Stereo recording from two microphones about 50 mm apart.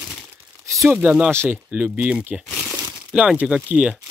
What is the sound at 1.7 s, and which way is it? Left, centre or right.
Speech, right.